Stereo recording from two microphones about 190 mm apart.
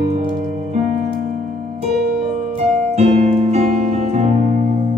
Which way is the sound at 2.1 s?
35° right (ahead or behind).